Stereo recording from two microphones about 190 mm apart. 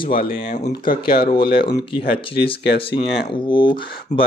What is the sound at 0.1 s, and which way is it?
Speech, 50° left (ahead or behind).